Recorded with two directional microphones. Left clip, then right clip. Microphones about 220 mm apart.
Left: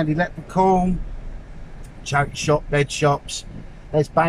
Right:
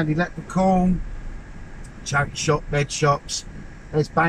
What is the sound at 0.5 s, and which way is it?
Speech, 50° left (ahead or behind).